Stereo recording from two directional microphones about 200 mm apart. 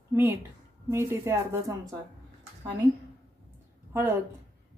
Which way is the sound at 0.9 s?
15° right (ahead or behind).